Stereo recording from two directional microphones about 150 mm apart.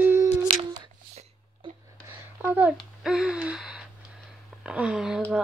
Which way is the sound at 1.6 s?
35° right (ahead or behind).